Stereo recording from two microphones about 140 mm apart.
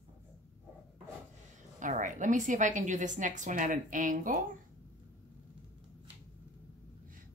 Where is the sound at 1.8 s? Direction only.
65° right (ahead or behind).